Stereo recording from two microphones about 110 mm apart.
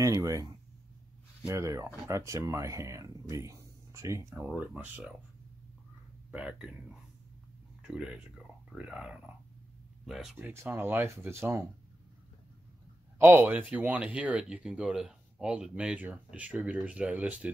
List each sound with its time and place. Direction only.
0.0 s speech: 35° right (ahead or behind)
4.5 s speech: 15° right (ahead or behind)
6.3 s speech: 10° right (ahead or behind)
7.8 s speech: 10° right (ahead or behind)
10.3 s speech: 20° right (ahead or behind)
13.2 s speech: 15° right (ahead or behind)